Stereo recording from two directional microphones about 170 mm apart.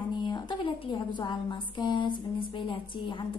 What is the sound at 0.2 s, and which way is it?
A woman's voice, 25° left (ahead or behind).